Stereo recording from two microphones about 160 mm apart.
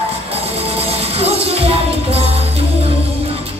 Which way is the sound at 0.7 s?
35° right (ahead or behind).